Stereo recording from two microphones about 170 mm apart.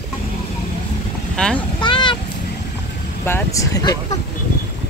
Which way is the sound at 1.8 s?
25° left (ahead or behind).